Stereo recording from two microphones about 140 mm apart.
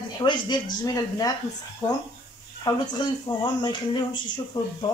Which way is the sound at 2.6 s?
30° left (ahead or behind).